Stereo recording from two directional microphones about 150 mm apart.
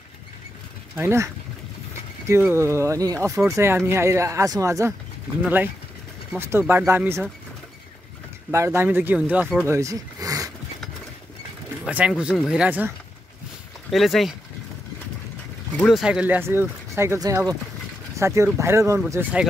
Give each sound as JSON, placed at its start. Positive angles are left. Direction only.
{"t": 0.9, "sound": "speech", "side_deg": -15}
{"t": 8.5, "sound": "speech", "side_deg": -15}
{"t": 9.8, "sound": "a sound", "side_deg": -20}
{"t": 11.8, "sound": "speech", "side_deg": -5}
{"t": 13.8, "sound": "speech", "side_deg": 0}
{"t": 15.9, "sound": "speech", "side_deg": -5}